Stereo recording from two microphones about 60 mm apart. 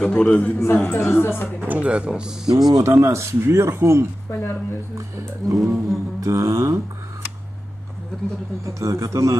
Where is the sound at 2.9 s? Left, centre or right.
Right.